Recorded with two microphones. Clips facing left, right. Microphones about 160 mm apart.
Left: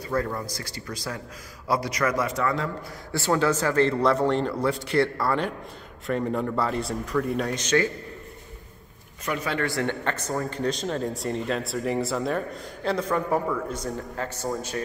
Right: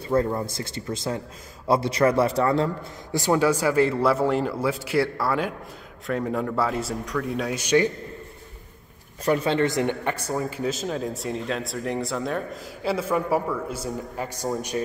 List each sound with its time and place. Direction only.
0.0 s speech: 25° right (ahead or behind)
3.1 s a man's voice: 15° right (ahead or behind)
9.2 s speech: 30° right (ahead or behind)